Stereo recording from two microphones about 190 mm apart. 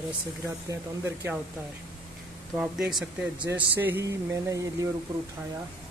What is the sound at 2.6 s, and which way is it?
Speech, 5° right (ahead or behind).